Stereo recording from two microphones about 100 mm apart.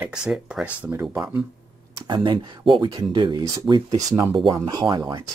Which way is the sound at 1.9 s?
35° right (ahead or behind).